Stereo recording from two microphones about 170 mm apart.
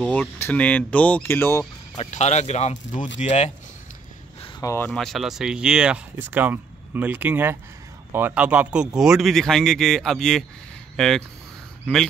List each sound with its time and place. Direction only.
0.0 s speech: 10° left (ahead or behind)
2.0 s speech: 40° left (ahead or behind)
4.6 s speech: 15° left (ahead or behind)
5.0 s a man's voice: centre (ahead or behind)